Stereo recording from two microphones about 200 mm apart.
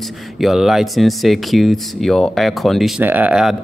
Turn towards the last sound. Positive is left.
turn(degrees=-5)  # may be behind; listen again after turning